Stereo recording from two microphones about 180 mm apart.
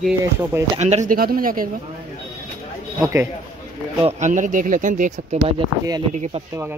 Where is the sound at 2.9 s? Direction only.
15° right (ahead or behind).